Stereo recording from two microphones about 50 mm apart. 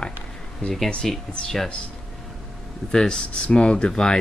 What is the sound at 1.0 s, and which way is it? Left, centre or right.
Speech, centre.